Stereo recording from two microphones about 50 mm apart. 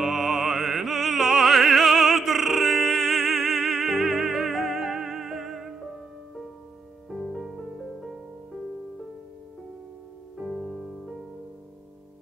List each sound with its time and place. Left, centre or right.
0.0 s opera: centre
7.1 s music: centre
10.3 s music: centre